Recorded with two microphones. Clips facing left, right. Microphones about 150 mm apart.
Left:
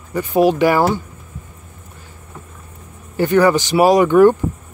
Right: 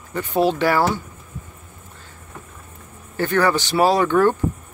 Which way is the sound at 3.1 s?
15° left (ahead or behind).